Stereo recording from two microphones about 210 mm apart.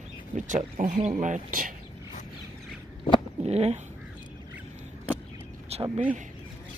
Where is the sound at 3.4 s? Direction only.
30° right (ahead or behind).